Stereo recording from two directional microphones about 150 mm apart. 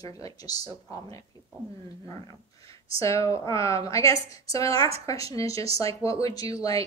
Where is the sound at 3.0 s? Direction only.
20° left (ahead or behind).